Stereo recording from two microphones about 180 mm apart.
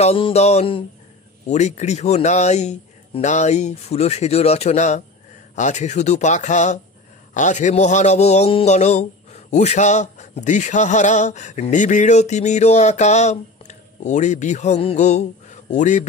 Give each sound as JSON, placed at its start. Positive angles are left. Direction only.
{"t": 0.0, "sound": "a man's voice", "side_deg": 35}